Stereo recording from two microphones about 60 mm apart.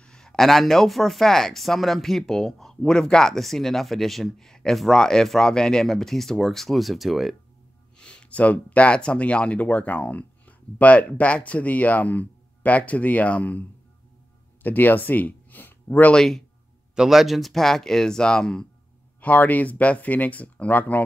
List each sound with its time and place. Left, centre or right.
0.0 s speech: centre
8.0 s speech: centre; by 16.1 s left
16.1 s speech: centre
16.9 s speech: centre
19.2 s speech: left